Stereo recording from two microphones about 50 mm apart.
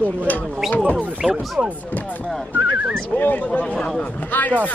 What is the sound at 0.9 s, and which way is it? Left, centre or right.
Speech, right.